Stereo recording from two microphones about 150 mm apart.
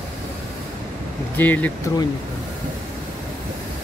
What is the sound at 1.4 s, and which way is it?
Speech, 10° left (ahead or behind).